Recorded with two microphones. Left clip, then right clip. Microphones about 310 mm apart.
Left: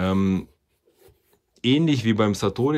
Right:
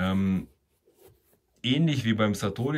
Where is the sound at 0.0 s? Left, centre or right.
Centre.